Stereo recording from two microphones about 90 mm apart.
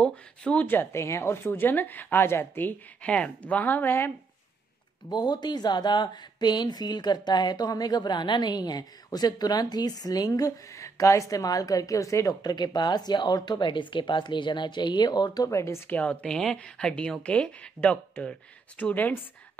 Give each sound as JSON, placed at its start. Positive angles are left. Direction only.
{"t": 0.0, "sound": "speech", "side_deg": 15}
{"t": 5.1, "sound": "speech", "side_deg": 50}
{"t": 15.9, "sound": "speech", "side_deg": 15}